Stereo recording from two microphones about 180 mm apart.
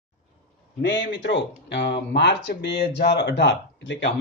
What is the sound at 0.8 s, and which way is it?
Speech, 85° left.